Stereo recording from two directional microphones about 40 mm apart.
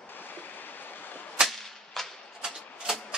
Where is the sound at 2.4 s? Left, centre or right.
Centre.